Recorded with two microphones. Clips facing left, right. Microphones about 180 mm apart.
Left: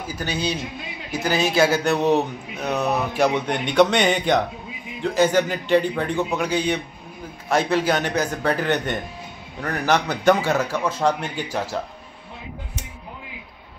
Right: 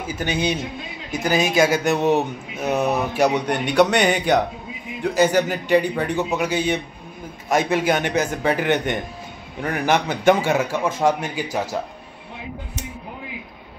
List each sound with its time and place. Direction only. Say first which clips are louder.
0.2 s a man's voice: right 3 dB; 20° right (ahead or behind)